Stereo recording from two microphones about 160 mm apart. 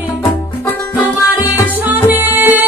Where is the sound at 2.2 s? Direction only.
10° right (ahead or behind).